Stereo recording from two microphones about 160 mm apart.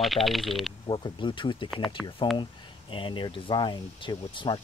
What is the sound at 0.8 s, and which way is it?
Speech, 30° left (ahead or behind).